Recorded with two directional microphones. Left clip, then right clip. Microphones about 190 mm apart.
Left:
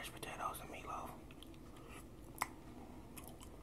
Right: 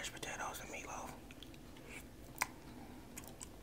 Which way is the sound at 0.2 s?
20° right (ahead or behind).